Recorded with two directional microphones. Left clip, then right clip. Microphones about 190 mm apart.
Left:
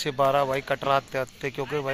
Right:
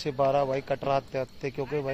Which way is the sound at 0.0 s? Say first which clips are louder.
Left 3 dB; 10° left (ahead or behind).